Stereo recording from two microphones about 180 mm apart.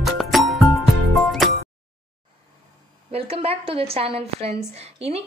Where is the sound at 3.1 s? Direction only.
35° right (ahead or behind).